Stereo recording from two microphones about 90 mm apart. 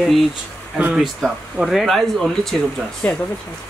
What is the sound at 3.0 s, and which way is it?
Speech, 15° left (ahead or behind).